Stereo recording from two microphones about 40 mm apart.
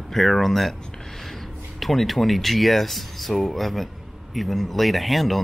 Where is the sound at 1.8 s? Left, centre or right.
Centre.